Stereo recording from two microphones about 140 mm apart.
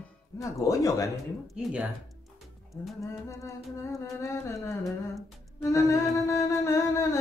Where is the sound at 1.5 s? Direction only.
10° right (ahead or behind).